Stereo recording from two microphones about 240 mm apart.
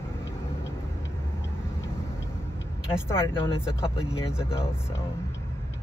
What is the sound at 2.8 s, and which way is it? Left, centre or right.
Speech, centre.